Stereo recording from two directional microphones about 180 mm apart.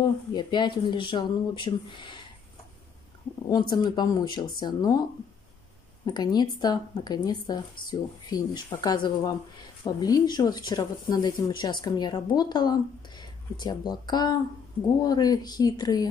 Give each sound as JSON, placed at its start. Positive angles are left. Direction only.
{"t": 0.3, "sound": "speech", "side_deg": 25}
{"t": 3.4, "sound": "speech", "side_deg": 25}
{"t": 6.0, "sound": "speech", "side_deg": 25}